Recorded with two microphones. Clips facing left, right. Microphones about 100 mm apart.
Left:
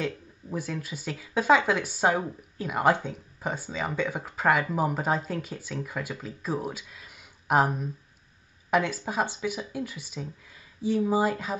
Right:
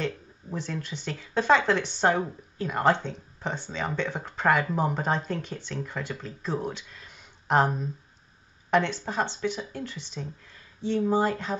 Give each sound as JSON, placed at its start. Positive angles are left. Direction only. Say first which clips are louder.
{"t": 0.0, "sound": "speech", "louder": "even", "side_deg": 5}